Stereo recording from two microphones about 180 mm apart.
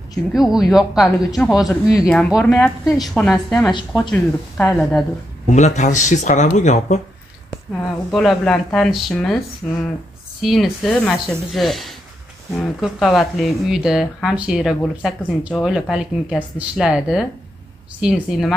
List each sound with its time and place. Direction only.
0.3 s speech: centre (ahead or behind)
3.7 s speech: 25° left (ahead or behind)
4.1 s speech: 5° left (ahead or behind)
5.5 s speech: 40° left (ahead or behind)
8.1 s speech: centre (ahead or behind)